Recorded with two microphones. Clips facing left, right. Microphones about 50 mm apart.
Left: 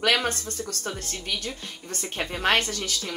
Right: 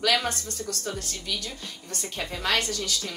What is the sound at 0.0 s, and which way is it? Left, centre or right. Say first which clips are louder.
Speech: left 2 dB; left.